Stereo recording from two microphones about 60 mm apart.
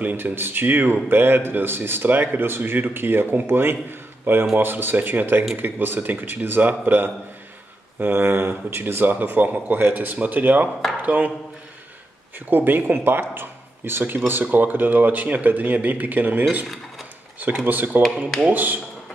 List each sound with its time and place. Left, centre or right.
0.0 s speech: right
12.4 s speech: right
17.6 s speech: right